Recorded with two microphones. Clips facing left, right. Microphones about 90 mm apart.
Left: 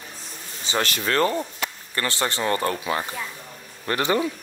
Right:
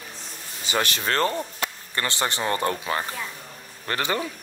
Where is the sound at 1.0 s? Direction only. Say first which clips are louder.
Left 3 dB; 35° right (ahead or behind).